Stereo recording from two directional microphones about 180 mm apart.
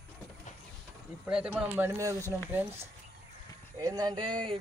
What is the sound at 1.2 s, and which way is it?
Speech, 10° right (ahead or behind).